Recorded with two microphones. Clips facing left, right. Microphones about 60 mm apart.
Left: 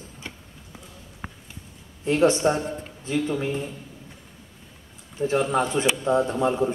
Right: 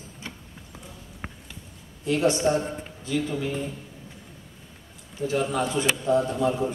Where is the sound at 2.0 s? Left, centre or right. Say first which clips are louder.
Left 3 dB; left.